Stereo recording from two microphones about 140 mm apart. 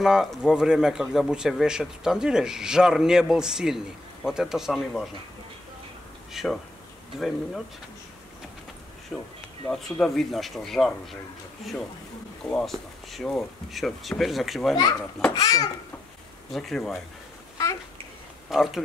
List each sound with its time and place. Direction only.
0.0 s speech: centre (ahead or behind)
6.3 s speech: centre (ahead or behind)
9.1 s speech: centre (ahead or behind)
12.4 s speech: 5° left (ahead or behind)
15.3 s a child's voice: 25° left (ahead or behind)
16.5 s speech: centre (ahead or behind)
18.5 s speech: centre (ahead or behind)